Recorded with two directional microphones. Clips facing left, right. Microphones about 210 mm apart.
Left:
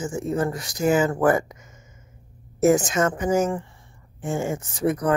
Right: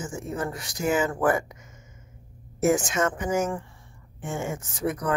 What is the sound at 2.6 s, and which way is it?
Speech, 40° left (ahead or behind).